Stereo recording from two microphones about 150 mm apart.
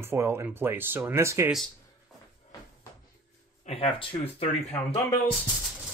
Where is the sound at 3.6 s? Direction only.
40° left (ahead or behind).